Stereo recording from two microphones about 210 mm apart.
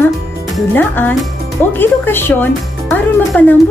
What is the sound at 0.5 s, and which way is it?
Speech, 10° left (ahead or behind).